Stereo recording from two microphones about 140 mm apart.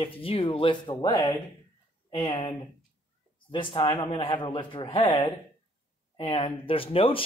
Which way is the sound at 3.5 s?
35° left (ahead or behind).